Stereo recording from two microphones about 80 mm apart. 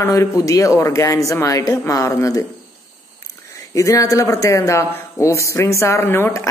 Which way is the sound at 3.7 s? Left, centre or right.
Left.